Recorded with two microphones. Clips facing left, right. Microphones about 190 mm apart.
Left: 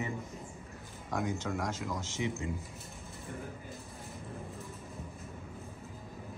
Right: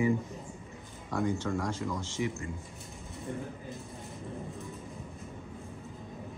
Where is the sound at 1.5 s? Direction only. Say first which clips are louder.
Right 4 dB; 5° left (ahead or behind).